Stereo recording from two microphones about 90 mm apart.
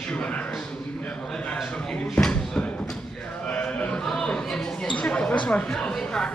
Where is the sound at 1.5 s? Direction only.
10° left (ahead or behind).